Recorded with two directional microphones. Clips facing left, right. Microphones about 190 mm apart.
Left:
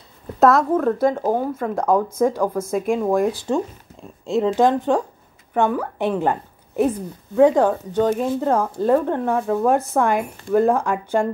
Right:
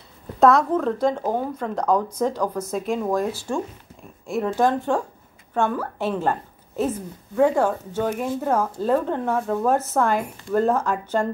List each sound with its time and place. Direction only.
0.4 s speech: centre (ahead or behind); by 8.3 s 20° left (ahead or behind)
8.4 s speech: 5° right (ahead or behind)
8.8 s speech: 10° left (ahead or behind)